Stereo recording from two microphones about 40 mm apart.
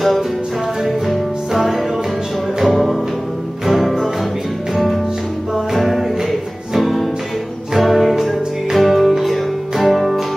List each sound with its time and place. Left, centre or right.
0.8 s music: centre